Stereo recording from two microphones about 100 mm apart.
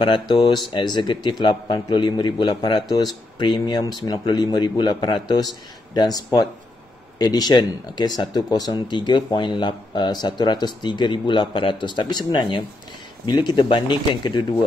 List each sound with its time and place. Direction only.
0.0 s speech: 55° left (ahead or behind)